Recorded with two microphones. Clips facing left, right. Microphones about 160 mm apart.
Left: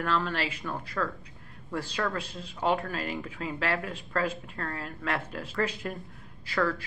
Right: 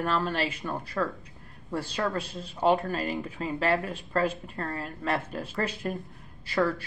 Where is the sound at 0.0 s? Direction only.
25° right (ahead or behind).